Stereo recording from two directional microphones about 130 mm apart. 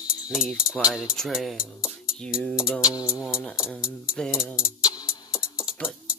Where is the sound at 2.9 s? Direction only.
25° left (ahead or behind).